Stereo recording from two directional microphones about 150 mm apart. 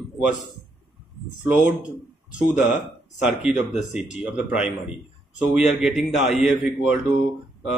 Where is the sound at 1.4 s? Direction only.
10° right (ahead or behind).